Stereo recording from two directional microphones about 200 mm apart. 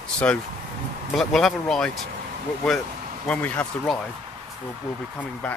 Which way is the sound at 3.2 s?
10° left (ahead or behind).